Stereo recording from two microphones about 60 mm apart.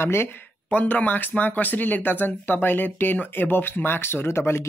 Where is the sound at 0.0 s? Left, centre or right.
Left.